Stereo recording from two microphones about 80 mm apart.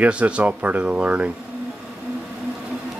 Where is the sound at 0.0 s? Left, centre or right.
Centre.